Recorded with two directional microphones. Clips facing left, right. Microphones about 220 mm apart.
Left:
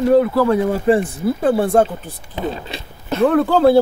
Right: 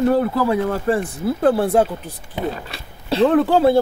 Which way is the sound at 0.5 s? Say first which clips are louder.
Left 4 dB; 15° left (ahead or behind).